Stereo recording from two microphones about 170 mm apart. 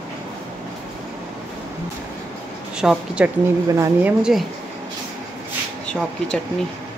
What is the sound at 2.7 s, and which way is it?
Speech, 5° right (ahead or behind).